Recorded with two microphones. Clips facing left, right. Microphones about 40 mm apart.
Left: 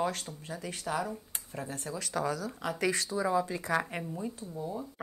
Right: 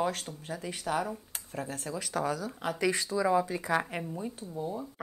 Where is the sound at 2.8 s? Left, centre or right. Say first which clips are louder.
Right 2 dB; right.